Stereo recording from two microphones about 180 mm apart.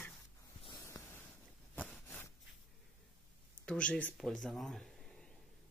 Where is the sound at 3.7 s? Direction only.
5° left (ahead or behind).